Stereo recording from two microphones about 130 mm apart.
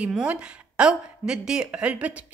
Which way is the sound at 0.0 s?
10° right (ahead or behind).